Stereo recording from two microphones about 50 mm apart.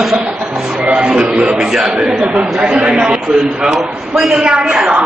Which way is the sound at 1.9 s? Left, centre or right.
Centre.